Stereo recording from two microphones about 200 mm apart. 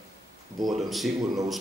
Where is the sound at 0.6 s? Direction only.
Centre (ahead or behind).